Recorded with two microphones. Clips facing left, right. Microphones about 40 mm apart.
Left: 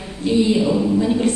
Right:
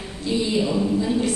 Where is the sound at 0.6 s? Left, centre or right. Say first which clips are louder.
Left 4 dB; centre.